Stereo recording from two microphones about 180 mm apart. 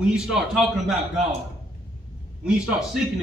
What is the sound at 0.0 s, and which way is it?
Speech, 5° right (ahead or behind).